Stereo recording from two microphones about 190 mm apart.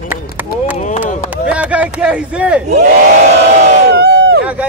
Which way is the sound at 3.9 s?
60° right (ahead or behind).